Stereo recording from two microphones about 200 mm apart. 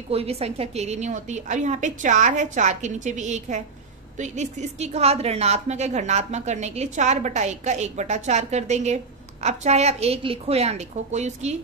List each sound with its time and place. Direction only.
0.1 s a woman's voice: 30° right (ahead or behind)